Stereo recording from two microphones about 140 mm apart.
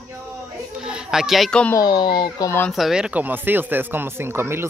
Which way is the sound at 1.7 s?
30° left (ahead or behind).